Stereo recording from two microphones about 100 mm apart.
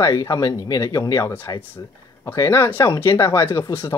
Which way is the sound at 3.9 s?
35° left (ahead or behind).